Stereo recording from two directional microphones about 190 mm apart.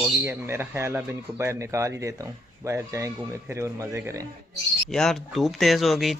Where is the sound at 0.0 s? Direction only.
10° right (ahead or behind).